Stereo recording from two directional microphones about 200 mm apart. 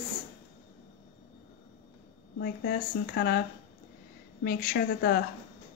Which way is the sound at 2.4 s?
50° left (ahead or behind).